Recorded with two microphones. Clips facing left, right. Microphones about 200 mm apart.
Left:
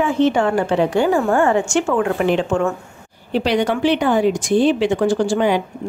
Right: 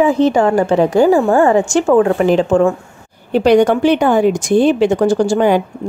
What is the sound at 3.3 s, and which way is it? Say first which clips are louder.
A woman's voice: right 8 dB; 50° right (ahead or behind).